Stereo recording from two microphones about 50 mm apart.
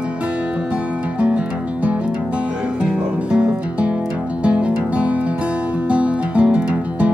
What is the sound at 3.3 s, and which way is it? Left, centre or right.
Music, right.